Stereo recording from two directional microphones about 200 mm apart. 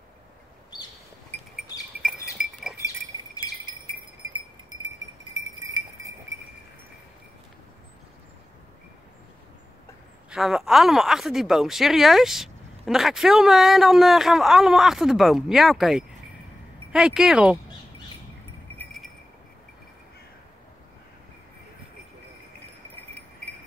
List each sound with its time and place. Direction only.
2.3 s chink: centre (ahead or behind)
3.1 s a sound: 15° right (ahead or behind)
10.3 s speech: 5° right (ahead or behind)